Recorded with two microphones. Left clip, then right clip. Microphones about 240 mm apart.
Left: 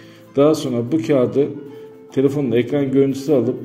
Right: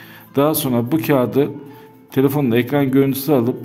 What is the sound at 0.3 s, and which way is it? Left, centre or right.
A man's voice, right.